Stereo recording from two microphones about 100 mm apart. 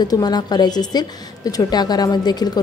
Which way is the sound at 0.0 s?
45° left (ahead or behind).